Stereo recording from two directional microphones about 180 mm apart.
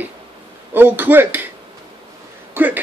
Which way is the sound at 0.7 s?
10° right (ahead or behind).